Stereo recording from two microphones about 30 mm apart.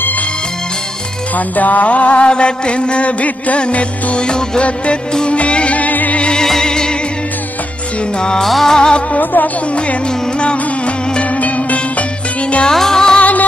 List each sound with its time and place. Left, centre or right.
1.3 s music: left
2.2 s music: left
5.8 s music: left
6.3 s music: centre
8.2 s music: left
9.2 s music: left
11.3 s music: left
12.7 s music: centre
13.2 s music: left